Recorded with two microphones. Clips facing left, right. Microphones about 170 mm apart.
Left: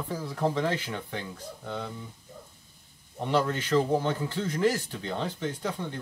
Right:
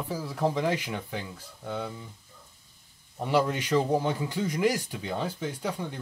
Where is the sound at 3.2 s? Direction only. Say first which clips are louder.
Right 1 dB; 10° right (ahead or behind).